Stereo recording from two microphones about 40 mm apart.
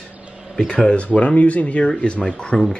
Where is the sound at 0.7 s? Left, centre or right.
Left.